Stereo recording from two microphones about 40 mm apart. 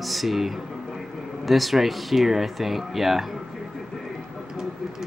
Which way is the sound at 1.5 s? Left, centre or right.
Centre.